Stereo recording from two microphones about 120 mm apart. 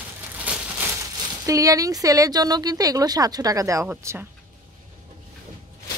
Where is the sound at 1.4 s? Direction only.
30° right (ahead or behind).